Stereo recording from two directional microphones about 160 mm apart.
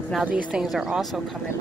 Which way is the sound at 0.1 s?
5° right (ahead or behind).